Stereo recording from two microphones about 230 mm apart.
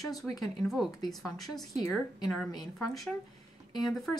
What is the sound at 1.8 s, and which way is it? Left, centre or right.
Speech, centre.